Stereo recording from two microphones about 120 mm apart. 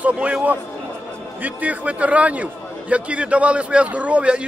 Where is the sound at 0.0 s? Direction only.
10° right (ahead or behind).